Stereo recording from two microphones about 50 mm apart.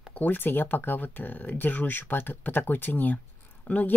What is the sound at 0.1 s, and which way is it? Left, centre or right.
Speech, left.